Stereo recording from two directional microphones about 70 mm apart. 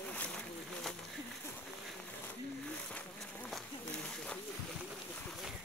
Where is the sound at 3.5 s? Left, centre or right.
Centre.